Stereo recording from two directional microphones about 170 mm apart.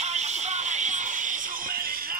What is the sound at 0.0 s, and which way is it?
Music, 40° right (ahead or behind).